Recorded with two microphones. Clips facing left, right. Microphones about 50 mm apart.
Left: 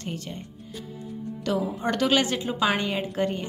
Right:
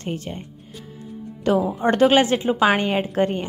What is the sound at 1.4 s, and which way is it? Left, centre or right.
A woman's voice, right.